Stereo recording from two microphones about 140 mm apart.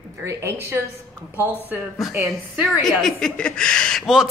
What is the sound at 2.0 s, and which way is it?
A woman's voice, centre (ahead or behind).